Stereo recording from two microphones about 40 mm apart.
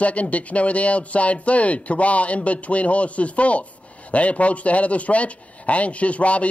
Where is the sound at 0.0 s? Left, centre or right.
Left.